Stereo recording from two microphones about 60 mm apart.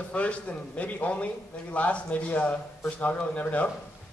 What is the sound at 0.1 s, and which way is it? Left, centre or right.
A man's voice, left.